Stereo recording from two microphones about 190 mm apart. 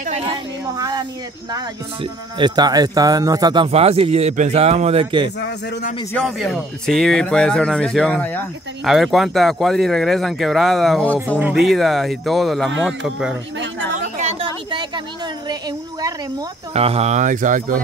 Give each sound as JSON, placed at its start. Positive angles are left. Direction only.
{"t": 0.0, "sound": "a woman's voice", "side_deg": -35}
{"t": 0.7, "sound": "speech", "side_deg": -20}
{"t": 2.3, "sound": "speech", "side_deg": -25}
{"t": 5.4, "sound": "a man's voice", "side_deg": 55}
{"t": 6.1, "sound": "speech", "side_deg": 0}
{"t": 13.6, "sound": "chatter", "side_deg": -75}
{"t": 14.1, "sound": "chatter", "side_deg": -35}
{"t": 16.7, "sound": "speech", "side_deg": -30}